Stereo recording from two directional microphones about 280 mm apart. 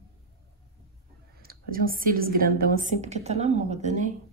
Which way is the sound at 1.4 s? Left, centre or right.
Right.